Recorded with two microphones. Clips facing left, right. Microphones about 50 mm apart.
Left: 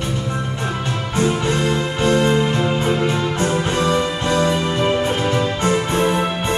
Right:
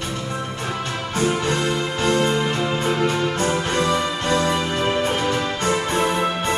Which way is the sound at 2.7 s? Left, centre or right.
Left.